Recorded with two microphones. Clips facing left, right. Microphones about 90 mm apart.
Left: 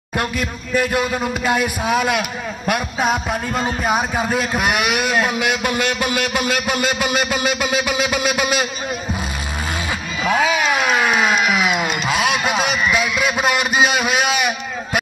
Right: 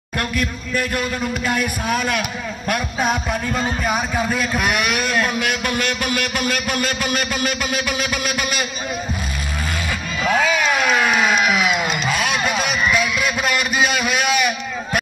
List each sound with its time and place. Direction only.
0.2 s speech: 20° left (ahead or behind)
4.6 s speech: 10° left (ahead or behind)
10.2 s speech: 5° left (ahead or behind)